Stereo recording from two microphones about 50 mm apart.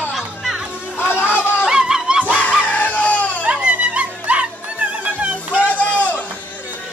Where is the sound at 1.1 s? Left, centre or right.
Left.